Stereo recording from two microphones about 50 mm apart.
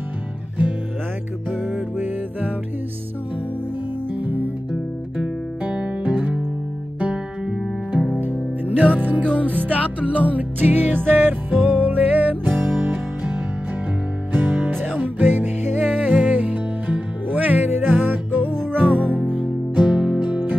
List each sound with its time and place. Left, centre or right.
4.1 s music: right
5.6 s music: right
8.2 s music: right
10.3 s music: right
17.6 s music: right
19.7 s music: centre
20.2 s music: right